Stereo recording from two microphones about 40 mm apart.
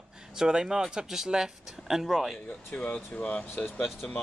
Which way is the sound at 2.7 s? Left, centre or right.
Left.